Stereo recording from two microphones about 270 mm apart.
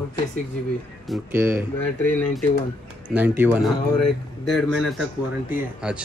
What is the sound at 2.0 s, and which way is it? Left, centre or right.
Speech, centre.